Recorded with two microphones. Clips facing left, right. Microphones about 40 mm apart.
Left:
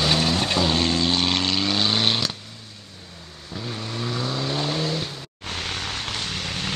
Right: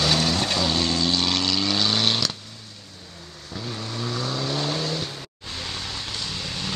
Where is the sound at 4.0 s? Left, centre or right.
Centre.